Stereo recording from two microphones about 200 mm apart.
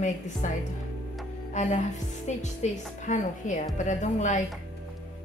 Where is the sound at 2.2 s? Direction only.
35° left (ahead or behind).